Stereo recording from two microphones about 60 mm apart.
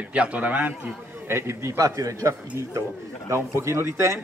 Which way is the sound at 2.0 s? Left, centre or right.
Right.